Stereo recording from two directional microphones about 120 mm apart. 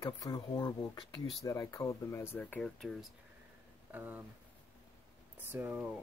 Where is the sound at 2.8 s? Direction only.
5° left (ahead or behind).